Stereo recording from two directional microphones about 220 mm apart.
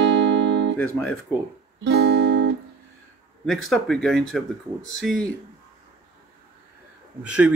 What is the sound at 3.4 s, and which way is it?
Speech, centre (ahead or behind).